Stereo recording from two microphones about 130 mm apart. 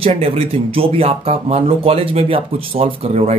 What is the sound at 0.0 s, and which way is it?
Speech, 50° right (ahead or behind).